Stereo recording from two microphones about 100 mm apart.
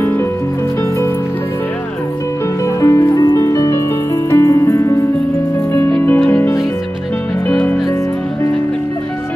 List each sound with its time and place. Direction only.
2.6 s music: 30° left (ahead or behind)